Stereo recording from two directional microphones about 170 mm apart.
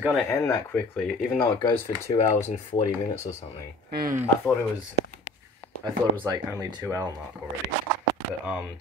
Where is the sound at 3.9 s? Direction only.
55° right (ahead or behind).